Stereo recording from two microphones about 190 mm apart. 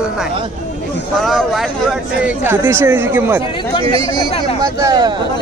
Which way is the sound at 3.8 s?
30° right (ahead or behind).